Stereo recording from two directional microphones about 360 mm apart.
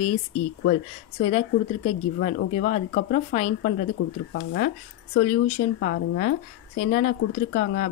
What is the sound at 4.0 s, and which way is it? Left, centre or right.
Speech, left.